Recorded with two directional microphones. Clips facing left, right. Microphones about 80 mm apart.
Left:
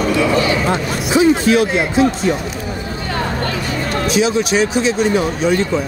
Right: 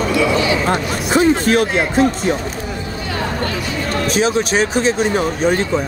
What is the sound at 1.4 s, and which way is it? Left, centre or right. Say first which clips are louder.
Speech: left 1 dB; right.